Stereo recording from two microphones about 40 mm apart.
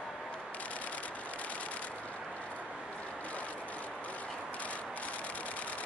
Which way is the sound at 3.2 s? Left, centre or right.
Left.